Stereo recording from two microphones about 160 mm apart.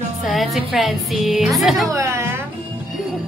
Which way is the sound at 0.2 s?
Centre (ahead or behind).